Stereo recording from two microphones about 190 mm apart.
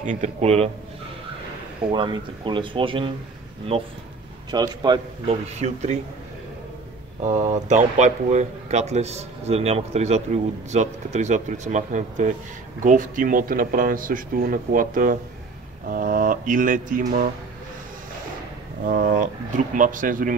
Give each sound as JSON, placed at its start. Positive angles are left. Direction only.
{"t": 0.0, "sound": "speech", "side_deg": -40}
{"t": 1.9, "sound": "speech", "side_deg": -25}
{"t": 5.6, "sound": "speech", "side_deg": -35}
{"t": 7.2, "sound": "speech", "side_deg": -40}
{"t": 18.9, "sound": "speech", "side_deg": -45}